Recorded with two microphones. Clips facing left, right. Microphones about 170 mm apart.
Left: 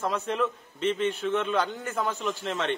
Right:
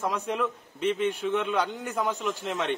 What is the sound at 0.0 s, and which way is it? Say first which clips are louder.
A man's voice: left 1 dB; 10° right (ahead or behind).